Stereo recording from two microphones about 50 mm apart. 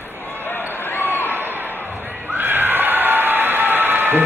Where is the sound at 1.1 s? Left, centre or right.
Left.